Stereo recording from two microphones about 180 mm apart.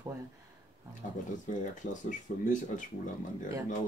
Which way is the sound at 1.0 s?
45° left (ahead or behind).